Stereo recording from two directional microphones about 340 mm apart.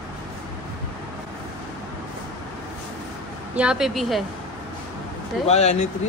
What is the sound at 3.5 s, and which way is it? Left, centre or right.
Speech, centre.